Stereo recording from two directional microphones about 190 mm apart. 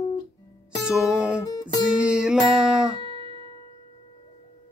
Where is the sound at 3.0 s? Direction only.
25° left (ahead or behind).